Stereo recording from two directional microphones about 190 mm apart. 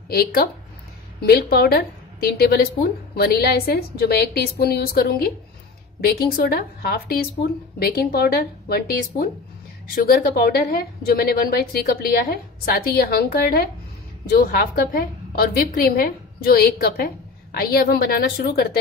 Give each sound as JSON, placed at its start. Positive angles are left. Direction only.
{"t": 0.1, "sound": "a woman's voice", "side_deg": 55}